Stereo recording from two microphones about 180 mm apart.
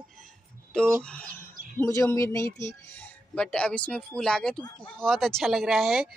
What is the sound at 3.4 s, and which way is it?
Speech, 5° left (ahead or behind).